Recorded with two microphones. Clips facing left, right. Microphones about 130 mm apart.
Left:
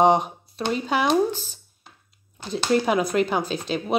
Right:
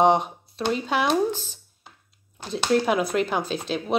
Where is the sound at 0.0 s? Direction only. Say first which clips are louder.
Left 1 dB; centre (ahead or behind).